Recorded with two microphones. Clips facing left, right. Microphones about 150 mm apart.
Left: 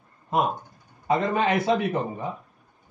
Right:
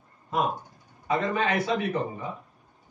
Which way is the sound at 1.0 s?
25° left (ahead or behind).